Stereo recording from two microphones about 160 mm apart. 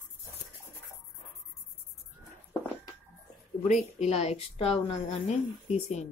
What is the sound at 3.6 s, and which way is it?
A woman's voice, 45° left (ahead or behind).